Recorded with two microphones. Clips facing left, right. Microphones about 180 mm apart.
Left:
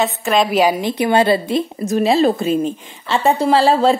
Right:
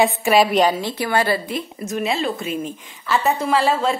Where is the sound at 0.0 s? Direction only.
10° right (ahead or behind).